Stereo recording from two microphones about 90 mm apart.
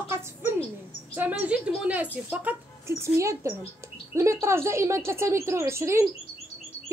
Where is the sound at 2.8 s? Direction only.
30° right (ahead or behind).